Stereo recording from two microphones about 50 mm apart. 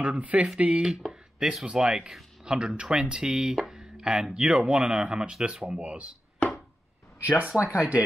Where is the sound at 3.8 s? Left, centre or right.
Centre.